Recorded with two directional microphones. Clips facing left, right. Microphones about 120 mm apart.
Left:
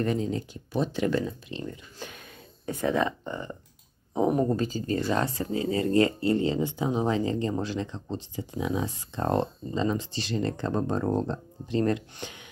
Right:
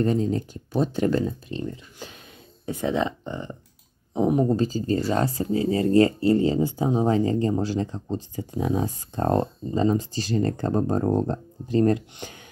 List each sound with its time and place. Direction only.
0.0 s speech: 35° right (ahead or behind)
2.0 s speech: 20° right (ahead or behind)
4.6 s speech: 35° right (ahead or behind)